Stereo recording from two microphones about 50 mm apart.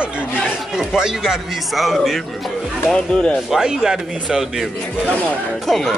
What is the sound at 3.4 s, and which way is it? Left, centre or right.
A man's voice, centre.